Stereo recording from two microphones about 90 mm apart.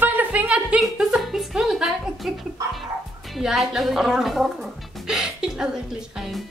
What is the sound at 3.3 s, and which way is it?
A woman's voice, centre (ahead or behind).